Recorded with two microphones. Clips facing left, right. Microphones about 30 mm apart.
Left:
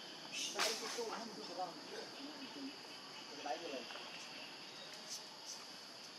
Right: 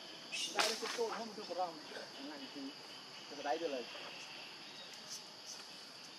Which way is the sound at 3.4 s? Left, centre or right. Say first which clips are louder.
Right 6 dB; right.